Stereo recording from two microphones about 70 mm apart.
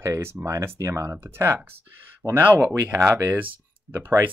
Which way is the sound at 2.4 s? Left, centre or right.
Right.